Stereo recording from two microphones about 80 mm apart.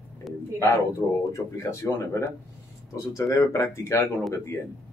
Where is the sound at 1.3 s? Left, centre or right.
Left.